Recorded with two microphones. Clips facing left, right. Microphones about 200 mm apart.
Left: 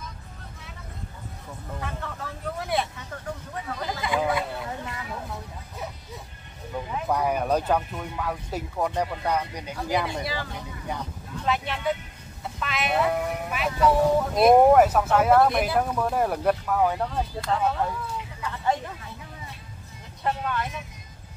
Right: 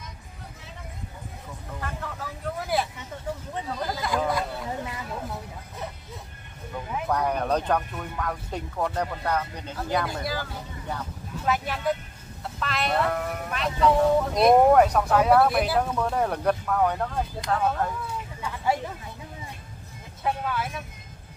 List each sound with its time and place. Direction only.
1.8 s speech: centre (ahead or behind)
3.0 s speech: 20° right (ahead or behind)
3.8 s speech: centre (ahead or behind)
4.6 s speech: 10° right (ahead or behind)
7.1 s speech: 10° left (ahead or behind)
10.0 s speech: centre (ahead or behind)
18.4 s speech: 10° right (ahead or behind)
20.2 s speech: 5° right (ahead or behind)